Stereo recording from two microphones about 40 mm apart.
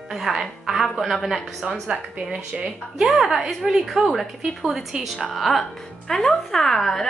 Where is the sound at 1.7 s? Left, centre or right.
Right.